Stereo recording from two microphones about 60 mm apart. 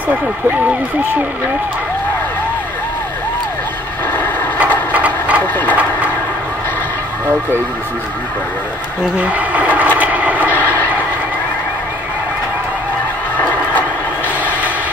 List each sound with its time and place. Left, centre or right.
0.1 s speech: right
4.9 s engine: right
9.1 s a sound: right